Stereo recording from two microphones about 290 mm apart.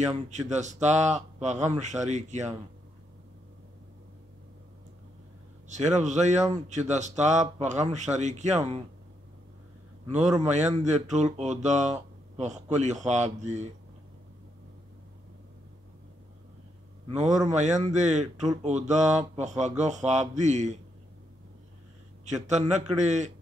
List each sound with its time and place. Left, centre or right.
0.5 s speech: right
5.7 s speech: right
10.4 s speech: right
17.1 s speech: right
22.2 s speech: right